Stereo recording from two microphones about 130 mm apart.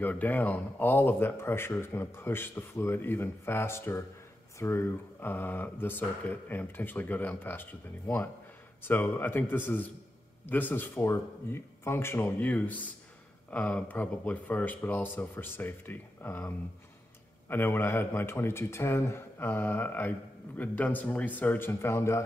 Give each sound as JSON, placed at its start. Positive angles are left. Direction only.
{"t": 0.0, "sound": "a man's voice", "side_deg": 15}